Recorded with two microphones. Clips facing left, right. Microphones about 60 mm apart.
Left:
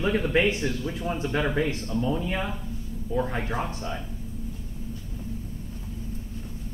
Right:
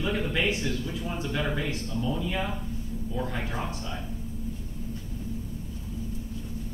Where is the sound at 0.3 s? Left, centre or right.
Left.